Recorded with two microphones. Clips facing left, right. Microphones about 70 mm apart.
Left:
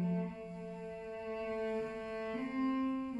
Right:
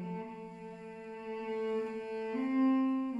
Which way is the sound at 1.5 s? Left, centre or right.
Left.